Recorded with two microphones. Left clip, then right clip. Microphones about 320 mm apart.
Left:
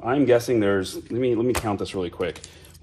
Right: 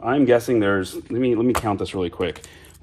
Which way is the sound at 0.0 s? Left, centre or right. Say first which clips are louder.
Right 2 dB; right.